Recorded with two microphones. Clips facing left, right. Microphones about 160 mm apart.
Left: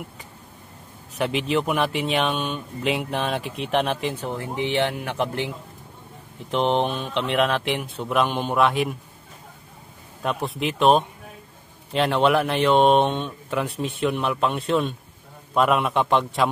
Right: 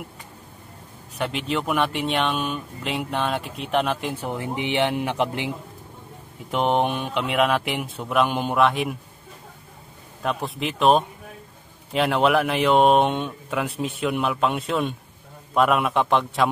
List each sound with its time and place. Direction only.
1.1 s speech: 5° left (ahead or behind)
4.2 s speech: 15° right (ahead or behind)
6.5 s speech: 10° right (ahead or behind)
10.2 s speech: centre (ahead or behind)